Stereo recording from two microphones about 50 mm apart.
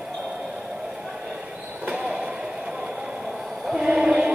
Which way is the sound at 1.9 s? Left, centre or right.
Centre.